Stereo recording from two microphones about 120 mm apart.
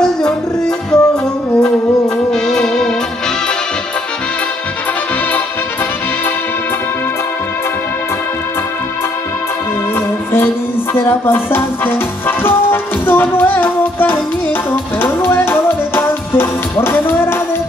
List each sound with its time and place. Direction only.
0.0 s music: 5° left (ahead or behind)
11.0 s music: 20° left (ahead or behind)